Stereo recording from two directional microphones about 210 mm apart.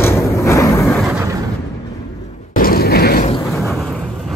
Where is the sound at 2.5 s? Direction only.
45° left (ahead or behind).